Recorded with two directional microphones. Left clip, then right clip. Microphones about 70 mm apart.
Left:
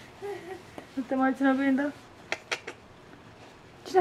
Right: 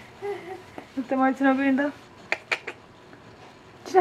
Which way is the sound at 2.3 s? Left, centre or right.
Left.